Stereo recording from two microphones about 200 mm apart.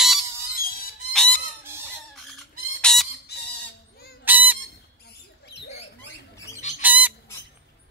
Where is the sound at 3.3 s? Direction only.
55° left (ahead or behind).